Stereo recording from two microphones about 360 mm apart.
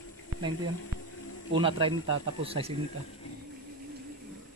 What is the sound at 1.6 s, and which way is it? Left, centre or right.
A man's voice, centre.